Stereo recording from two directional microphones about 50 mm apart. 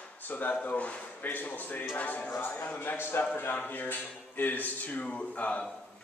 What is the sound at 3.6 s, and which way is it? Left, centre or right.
Speech, left.